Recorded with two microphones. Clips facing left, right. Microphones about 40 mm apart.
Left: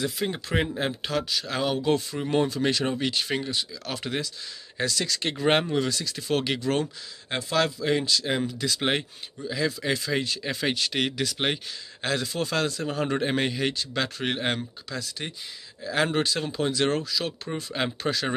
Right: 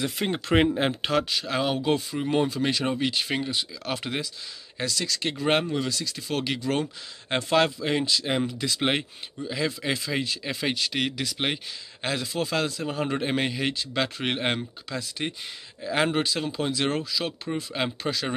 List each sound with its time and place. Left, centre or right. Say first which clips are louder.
0.0 s speech: right 1 dB; right
4.7 s speech: left 1 dB; centre
7.5 s speech: right 1 dB; centre
10.1 s speech: left 1 dB; centre; by 16.1 s right
16.1 s speech: even; centre
17.6 s speech: left 2 dB; centre